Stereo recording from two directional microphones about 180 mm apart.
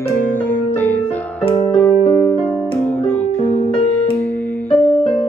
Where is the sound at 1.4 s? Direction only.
30° left (ahead or behind).